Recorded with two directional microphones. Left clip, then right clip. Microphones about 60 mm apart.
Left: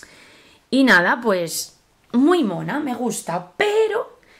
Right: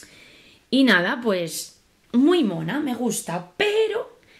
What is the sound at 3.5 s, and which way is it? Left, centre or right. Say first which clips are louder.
Speech: left 3 dB; left.